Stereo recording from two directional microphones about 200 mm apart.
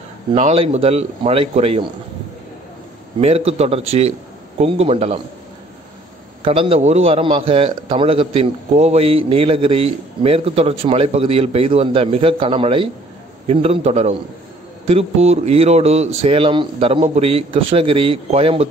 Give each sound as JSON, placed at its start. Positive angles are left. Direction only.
{"t": 0.3, "sound": "a man's voice", "side_deg": -30}
{"t": 3.2, "sound": "a man's voice", "side_deg": -30}
{"t": 6.4, "sound": "a man's voice", "side_deg": -30}